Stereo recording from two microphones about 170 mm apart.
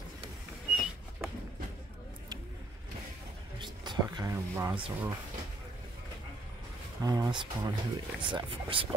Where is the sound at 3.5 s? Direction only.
25° right (ahead or behind).